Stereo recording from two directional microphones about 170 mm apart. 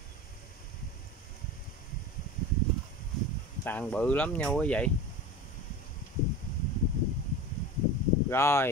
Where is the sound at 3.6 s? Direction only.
10° left (ahead or behind).